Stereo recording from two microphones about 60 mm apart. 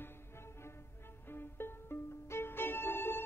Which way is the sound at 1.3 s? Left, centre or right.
Left.